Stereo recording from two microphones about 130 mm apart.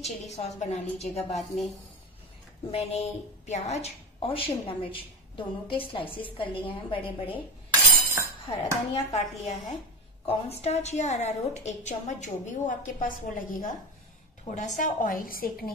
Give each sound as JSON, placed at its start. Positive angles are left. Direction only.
{"t": 0.0, "sound": "a woman's voice", "side_deg": 60}
{"t": 2.7, "sound": "a woman's voice", "side_deg": 55}
{"t": 8.5, "sound": "a woman's voice", "side_deg": 50}
{"t": 14.4, "sound": "a woman's voice", "side_deg": 65}
{"t": 14.8, "sound": "a woman's voice", "side_deg": 90}